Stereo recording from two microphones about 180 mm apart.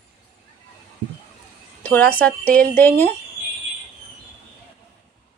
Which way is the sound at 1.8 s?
10° left (ahead or behind).